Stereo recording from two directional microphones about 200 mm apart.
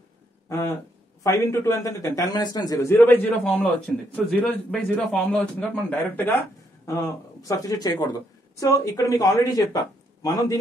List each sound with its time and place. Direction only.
0.5 s speech: 15° left (ahead or behind)